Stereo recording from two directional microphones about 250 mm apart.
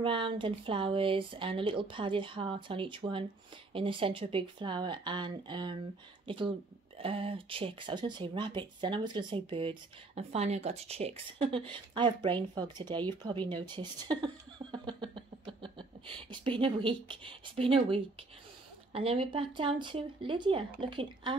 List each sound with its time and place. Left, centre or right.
0.0 s speech: right